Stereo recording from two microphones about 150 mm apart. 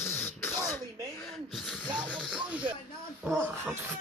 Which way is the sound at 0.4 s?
15° left (ahead or behind).